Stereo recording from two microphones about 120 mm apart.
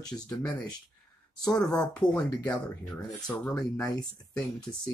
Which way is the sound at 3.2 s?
10° left (ahead or behind).